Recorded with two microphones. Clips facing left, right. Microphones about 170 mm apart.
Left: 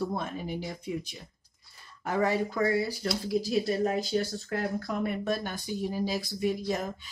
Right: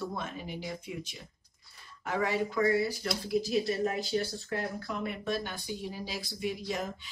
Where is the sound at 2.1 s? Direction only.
40° left (ahead or behind).